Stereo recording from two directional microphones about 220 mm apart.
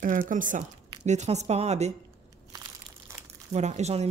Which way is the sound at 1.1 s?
30° right (ahead or behind).